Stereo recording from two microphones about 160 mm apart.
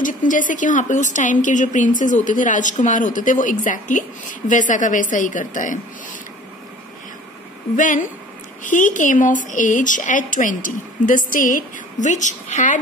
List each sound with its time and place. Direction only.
0.0 s speech: 55° left (ahead or behind)
7.7 s speech: 55° left (ahead or behind)